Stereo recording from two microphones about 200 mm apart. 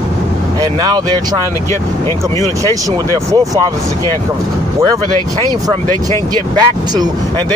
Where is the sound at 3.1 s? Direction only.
15° right (ahead or behind).